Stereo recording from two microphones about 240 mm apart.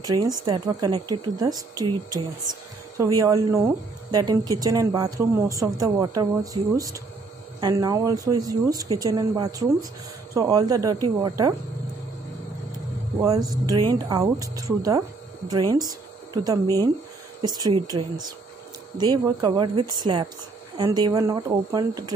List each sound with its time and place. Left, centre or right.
0.0 s speech: centre
13.2 s speech: centre
17.4 s speech: centre